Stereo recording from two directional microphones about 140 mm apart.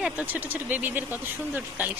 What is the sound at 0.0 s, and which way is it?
A woman's voice, 10° right (ahead or behind).